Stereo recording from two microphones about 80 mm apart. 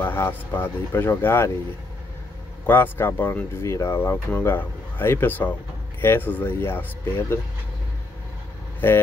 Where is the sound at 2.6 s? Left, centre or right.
Left.